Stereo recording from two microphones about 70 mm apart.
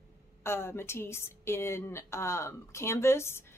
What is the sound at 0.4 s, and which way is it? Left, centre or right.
A woman's voice, left.